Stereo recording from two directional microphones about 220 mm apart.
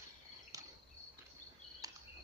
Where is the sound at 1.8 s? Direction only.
15° right (ahead or behind).